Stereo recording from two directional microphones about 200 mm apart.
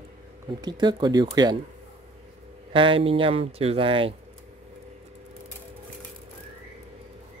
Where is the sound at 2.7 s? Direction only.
25° right (ahead or behind).